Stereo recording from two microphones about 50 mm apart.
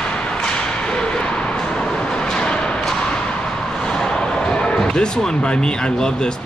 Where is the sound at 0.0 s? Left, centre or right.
Centre.